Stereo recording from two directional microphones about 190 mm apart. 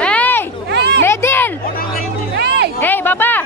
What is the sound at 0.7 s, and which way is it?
Children playing, 60° right (ahead or behind).